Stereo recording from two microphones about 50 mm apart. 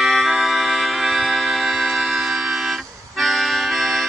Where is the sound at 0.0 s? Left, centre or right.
Centre.